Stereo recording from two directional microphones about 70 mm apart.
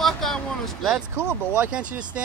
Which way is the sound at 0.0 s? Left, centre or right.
Centre.